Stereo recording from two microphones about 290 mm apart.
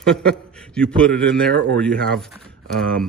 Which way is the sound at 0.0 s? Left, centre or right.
Centre.